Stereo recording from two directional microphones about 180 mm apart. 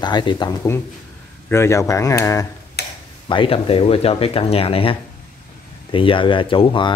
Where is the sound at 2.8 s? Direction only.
65° left (ahead or behind).